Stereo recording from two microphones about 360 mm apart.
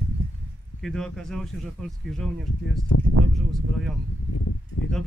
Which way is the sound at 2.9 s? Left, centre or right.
Left.